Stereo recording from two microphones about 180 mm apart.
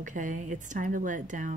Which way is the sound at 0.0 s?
45° right (ahead or behind).